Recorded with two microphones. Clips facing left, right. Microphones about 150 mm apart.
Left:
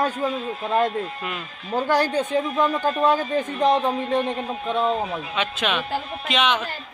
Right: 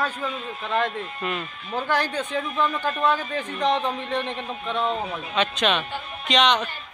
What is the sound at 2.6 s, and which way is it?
Speech, 35° left (ahead or behind).